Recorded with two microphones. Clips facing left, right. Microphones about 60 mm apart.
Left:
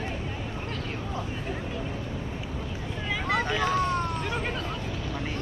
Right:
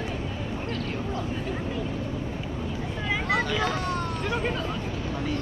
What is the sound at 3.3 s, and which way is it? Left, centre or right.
Vehicle, left.